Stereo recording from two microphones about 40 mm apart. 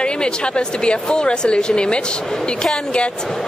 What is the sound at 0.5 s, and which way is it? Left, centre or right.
Speech, left.